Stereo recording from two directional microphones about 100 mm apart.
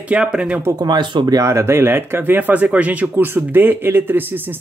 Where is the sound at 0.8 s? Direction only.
45° right (ahead or behind).